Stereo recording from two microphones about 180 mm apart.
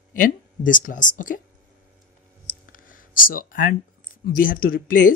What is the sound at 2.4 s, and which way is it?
Speech, 50° left (ahead or behind).